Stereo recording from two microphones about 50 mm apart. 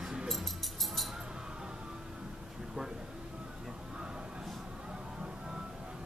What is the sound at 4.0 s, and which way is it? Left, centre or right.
Music, centre.